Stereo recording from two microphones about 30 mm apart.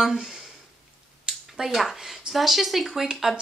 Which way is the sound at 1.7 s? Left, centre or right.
Centre.